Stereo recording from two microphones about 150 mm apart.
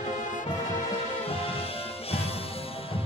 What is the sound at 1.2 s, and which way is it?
Music, 40° left (ahead or behind).